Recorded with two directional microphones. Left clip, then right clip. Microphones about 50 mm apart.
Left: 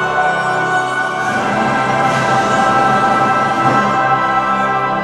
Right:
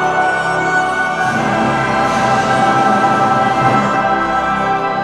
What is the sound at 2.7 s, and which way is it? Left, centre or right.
Music, centre.